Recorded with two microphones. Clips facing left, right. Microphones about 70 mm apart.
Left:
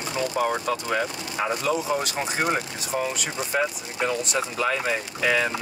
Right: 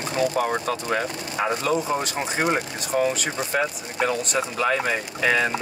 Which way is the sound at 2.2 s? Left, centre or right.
Centre.